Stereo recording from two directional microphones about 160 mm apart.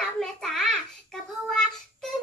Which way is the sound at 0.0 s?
5° left (ahead or behind).